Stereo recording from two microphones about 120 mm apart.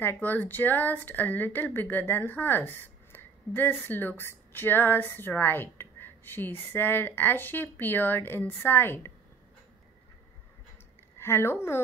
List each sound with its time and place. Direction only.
0.0 s speech: 15° left (ahead or behind)
11.1 s a woman's voice: 20° left (ahead or behind)